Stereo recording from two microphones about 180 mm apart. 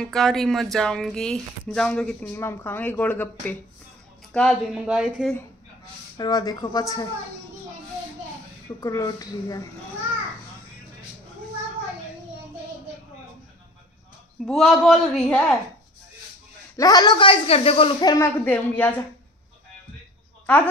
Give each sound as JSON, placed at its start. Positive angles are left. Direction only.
{"t": 0.0, "sound": "speech", "side_deg": 0}
{"t": 6.1, "sound": "speech", "side_deg": 20}
{"t": 8.8, "sound": "speech", "side_deg": 20}
{"t": 14.4, "sound": "speech", "side_deg": 0}
{"t": 16.7, "sound": "speech", "side_deg": 20}
{"t": 18.1, "sound": "speech", "side_deg": 10}